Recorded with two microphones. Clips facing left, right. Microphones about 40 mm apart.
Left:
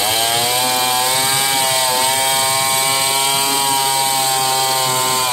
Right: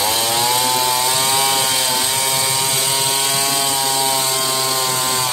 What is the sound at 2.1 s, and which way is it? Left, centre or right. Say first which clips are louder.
Chainsaw: left 4 dB; left.